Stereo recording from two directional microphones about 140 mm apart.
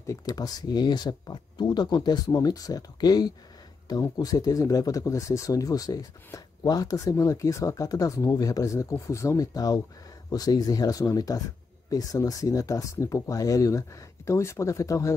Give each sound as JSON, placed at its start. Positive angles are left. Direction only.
{"t": 0.0, "sound": "speech", "side_deg": 25}